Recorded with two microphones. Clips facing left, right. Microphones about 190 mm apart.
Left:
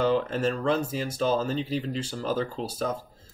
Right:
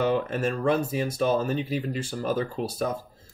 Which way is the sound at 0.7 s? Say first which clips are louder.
Right 2 dB; 60° right (ahead or behind).